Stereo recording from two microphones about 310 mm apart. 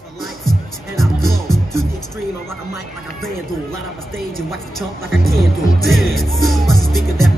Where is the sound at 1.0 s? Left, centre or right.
Centre.